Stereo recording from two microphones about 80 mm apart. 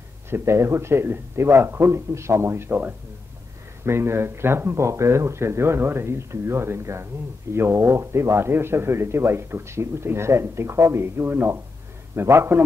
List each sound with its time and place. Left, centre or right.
0.3 s a man's voice: right